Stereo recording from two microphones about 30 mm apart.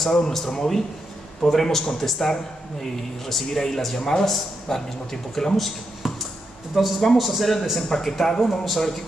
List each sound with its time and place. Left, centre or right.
0.0 s a man's voice: centre
5.6 s a sound: centre
6.7 s a man's voice: centre